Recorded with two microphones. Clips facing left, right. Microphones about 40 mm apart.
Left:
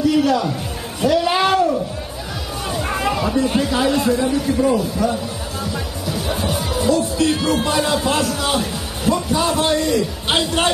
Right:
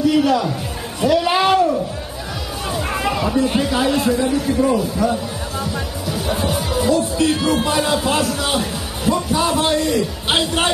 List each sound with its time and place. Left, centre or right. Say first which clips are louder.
0.2 s speech: right 1 dB; centre
1.0 s a sound: right 1 dB; centre
2.7 s speech: even; centre
5.6 s music: right 1 dB; centre